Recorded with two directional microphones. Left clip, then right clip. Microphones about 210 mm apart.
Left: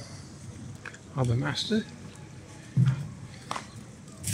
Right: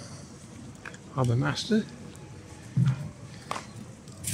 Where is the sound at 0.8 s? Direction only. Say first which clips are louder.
Right 2 dB; 10° right (ahead or behind).